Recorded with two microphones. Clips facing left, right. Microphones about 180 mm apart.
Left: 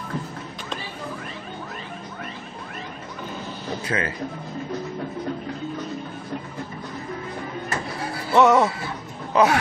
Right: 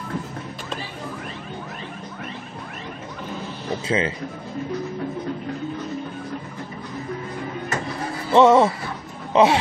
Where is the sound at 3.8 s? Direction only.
25° right (ahead or behind).